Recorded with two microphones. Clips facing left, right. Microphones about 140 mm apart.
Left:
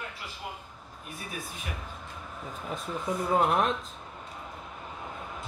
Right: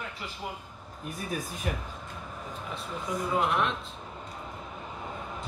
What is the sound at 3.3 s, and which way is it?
Speech, 40° left (ahead or behind).